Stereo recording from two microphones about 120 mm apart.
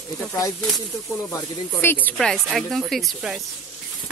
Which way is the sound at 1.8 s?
15° left (ahead or behind).